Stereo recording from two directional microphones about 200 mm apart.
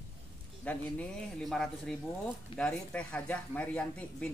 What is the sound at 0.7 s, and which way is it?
Speech, 5° left (ahead or behind).